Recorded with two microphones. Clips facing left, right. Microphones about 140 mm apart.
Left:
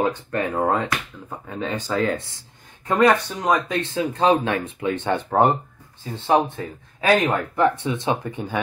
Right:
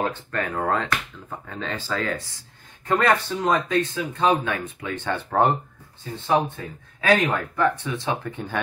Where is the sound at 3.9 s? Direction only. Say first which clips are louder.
Left 3 dB; 35° left (ahead or behind); by 5.5 s 15° left (ahead or behind).